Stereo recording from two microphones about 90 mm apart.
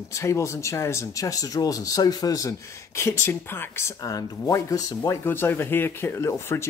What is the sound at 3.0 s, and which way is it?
Speech, 30° left (ahead or behind).